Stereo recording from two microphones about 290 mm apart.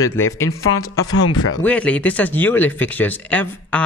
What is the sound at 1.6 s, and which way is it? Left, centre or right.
Speech, centre.